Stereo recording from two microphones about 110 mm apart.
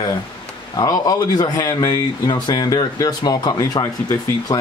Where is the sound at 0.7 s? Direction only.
35° left (ahead or behind).